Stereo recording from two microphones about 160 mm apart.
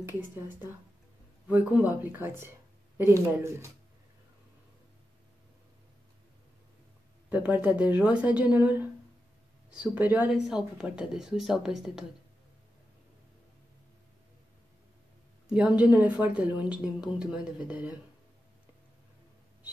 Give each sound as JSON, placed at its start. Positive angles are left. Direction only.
{"t": 0.0, "sound": "a woman's voice", "side_deg": -15}
{"t": 7.2, "sound": "a woman's voice", "side_deg": -10}
{"t": 15.5, "sound": "a woman's voice", "side_deg": -10}